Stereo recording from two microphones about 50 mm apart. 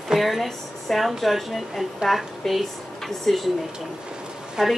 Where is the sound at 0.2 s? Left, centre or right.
Centre.